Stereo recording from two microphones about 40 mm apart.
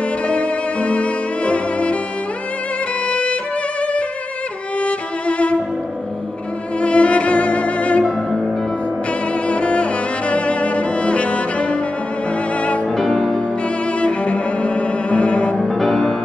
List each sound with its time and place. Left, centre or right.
0.3 s music: left
3.1 s music: left
4.7 s music: left
6.8 s music: left
8.0 s music: centre
9.3 s cello: left
12.5 s music: left
12.9 s music: centre
13.9 s cello: left
15.5 s music: centre